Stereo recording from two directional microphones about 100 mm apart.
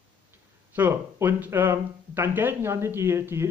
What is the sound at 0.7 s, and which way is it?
Speech, 20° right (ahead or behind).